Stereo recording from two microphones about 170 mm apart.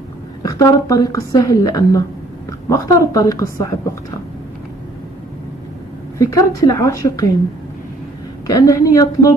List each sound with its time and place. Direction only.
0.4 s a woman's voice: 20° left (ahead or behind)
6.1 s a woman's voice: 20° left (ahead or behind)
8.5 s a woman's voice: 20° left (ahead or behind)